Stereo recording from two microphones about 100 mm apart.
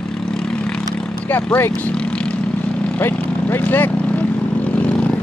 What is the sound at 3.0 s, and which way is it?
Vehicle, 20° left (ahead or behind).